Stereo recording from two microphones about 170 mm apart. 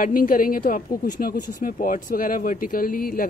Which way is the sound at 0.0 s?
55° left (ahead or behind).